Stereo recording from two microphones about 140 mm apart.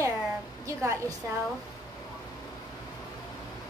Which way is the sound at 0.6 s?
20° right (ahead or behind).